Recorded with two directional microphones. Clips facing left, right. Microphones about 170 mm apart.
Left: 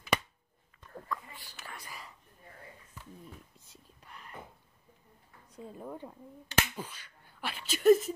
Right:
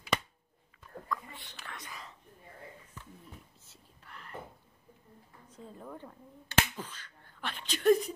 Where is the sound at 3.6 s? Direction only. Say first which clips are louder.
Left 1 dB; 15° left (ahead or behind).